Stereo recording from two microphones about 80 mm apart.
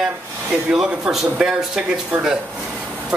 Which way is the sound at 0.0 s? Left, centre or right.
Centre.